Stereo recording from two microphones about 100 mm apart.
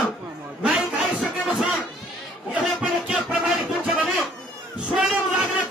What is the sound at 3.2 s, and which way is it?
Music, centre (ahead or behind).